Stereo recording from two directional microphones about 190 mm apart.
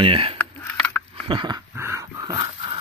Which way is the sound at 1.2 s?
25° right (ahead or behind).